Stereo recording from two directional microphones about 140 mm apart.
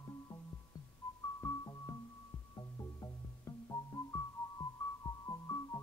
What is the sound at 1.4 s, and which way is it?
Music, 20° left (ahead or behind).